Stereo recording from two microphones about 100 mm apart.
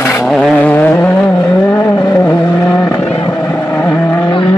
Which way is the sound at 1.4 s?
35° left (ahead or behind).